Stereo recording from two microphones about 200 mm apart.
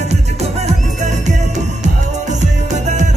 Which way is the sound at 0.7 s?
35° right (ahead or behind).